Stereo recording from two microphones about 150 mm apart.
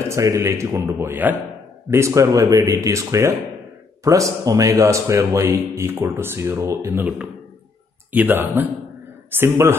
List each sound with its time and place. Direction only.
0.1 s speech: 20° right (ahead or behind)